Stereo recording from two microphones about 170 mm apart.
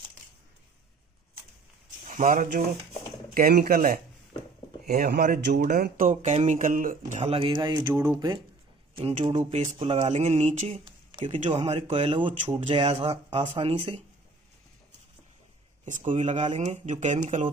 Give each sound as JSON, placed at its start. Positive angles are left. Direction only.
{"t": 2.0, "sound": "speech", "side_deg": -50}
{"t": 5.5, "sound": "speech", "side_deg": -50}
{"t": 6.2, "sound": "speech", "side_deg": -40}
{"t": 7.3, "sound": "speech", "side_deg": -30}
{"t": 10.9, "sound": "a sound", "side_deg": -30}
{"t": 11.3, "sound": "speech", "side_deg": -45}
{"t": 15.8, "sound": "speech", "side_deg": -45}